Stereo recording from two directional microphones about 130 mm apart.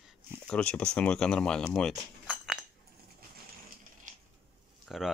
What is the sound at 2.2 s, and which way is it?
Chink, 5° right (ahead or behind).